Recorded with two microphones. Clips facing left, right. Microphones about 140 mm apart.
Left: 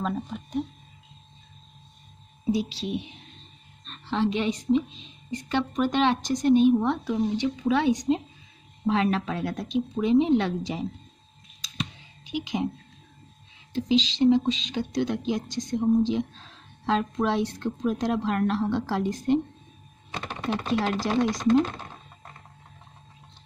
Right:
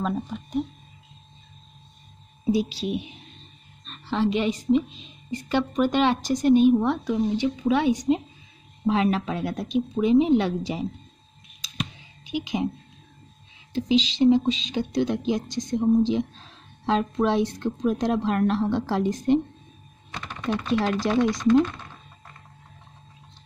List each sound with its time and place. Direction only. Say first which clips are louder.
0.0 s speech: right 2 dB; 10° right (ahead or behind)
2.5 s speech: right 3 dB; 10° right (ahead or behind)
12.3 s speech: right 2 dB; 10° right (ahead or behind)
13.7 s a woman's voice: right 2 dB; 10° right (ahead or behind)
20.3 s chopping: right 2 dB; 30° left (ahead or behind)